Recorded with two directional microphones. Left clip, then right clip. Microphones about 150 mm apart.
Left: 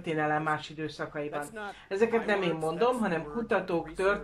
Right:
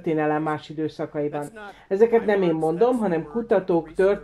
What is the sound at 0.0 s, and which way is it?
Speech, 35° right (ahead or behind).